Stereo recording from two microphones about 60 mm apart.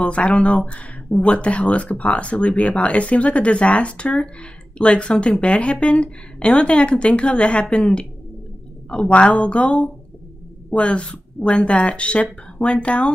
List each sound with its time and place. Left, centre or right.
0.0 s speech: centre